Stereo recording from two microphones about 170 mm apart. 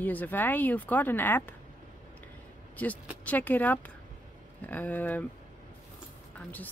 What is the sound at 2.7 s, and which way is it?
Speech, 10° left (ahead or behind).